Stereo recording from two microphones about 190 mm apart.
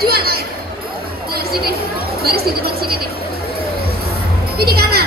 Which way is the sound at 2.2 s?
55° right (ahead or behind).